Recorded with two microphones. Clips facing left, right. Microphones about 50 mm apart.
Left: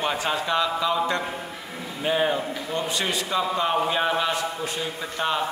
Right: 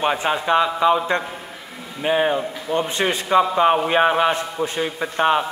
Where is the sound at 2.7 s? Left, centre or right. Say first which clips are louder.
Right 6 dB; right.